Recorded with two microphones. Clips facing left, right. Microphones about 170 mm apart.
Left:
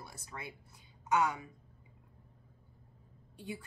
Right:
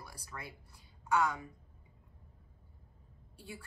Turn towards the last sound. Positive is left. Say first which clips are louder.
# left 5 dB
turn(degrees=20)  # may be behind; listen again after turning